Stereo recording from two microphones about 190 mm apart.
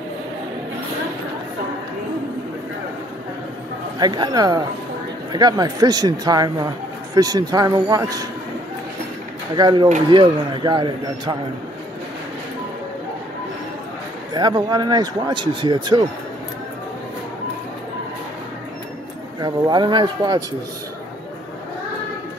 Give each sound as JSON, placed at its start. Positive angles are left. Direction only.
{"t": 4.0, "sound": "speech", "side_deg": -20}
{"t": 9.6, "sound": "speech", "side_deg": -20}
{"t": 14.3, "sound": "speech", "side_deg": -20}
{"t": 19.4, "sound": "speech", "side_deg": -20}